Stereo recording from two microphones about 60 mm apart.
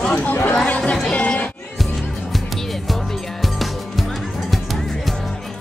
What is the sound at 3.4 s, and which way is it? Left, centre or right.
Music, centre.